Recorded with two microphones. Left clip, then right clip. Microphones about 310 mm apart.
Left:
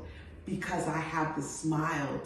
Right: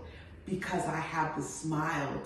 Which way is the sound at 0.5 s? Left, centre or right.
Centre.